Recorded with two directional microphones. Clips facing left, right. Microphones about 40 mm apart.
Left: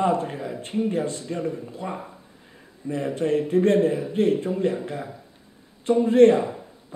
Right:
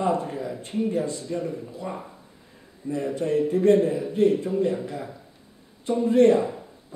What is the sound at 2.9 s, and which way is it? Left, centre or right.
Speech, left.